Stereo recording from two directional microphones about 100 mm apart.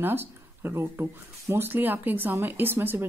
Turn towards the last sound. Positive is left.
turn(degrees=-20)  # may be behind; listen again after turning